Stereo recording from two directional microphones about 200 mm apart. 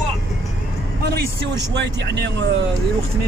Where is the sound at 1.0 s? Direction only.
55° right (ahead or behind).